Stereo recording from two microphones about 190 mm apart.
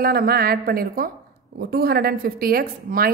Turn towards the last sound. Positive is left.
turn(degrees=-50)  # may be behind; listen again after turning